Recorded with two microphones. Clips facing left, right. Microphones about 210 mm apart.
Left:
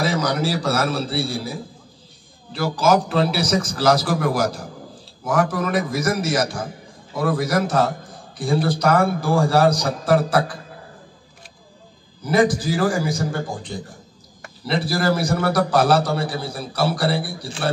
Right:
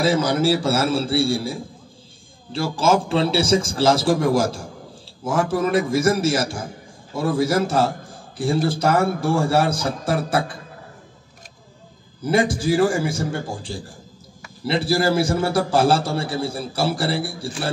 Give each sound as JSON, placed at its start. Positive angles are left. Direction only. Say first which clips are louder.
{"t": 0.0, "sound": "a man's voice", "louder": "right 3 dB", "side_deg": -25}
{"t": 12.2, "sound": "a man's voice", "louder": "left 2 dB", "side_deg": -25}